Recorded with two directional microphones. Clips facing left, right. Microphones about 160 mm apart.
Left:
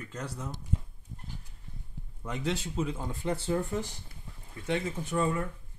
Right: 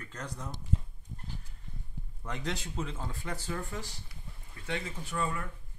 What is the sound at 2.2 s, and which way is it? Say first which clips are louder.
Speech: left 4 dB; 5° left (ahead or behind).